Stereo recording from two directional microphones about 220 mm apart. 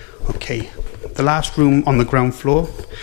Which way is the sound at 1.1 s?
15° left (ahead or behind).